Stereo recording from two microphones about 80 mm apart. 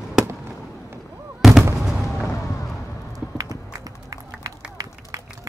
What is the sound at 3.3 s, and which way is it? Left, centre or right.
Clip-clop, right.